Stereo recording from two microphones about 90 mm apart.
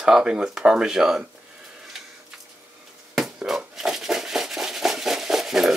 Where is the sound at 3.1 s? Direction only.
5° right (ahead or behind).